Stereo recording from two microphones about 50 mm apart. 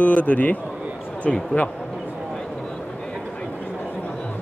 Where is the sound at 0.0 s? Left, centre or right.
Left.